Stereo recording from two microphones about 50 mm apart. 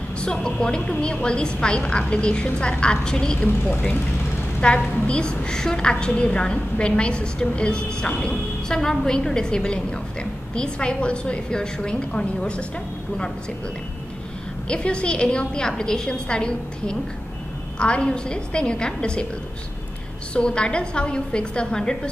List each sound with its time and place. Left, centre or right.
0.2 s a woman's voice: centre
4.6 s a woman's voice: left
14.7 s a woman's voice: centre
20.3 s a woman's voice: centre